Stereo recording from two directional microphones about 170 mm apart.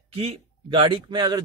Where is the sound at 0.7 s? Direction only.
30° right (ahead or behind).